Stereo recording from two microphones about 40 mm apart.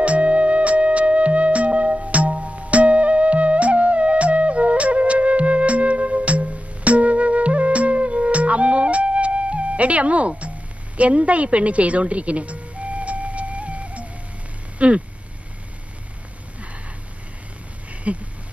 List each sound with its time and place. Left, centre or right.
0.0 s music: right
14.8 s speech: right
18.1 s a sound: right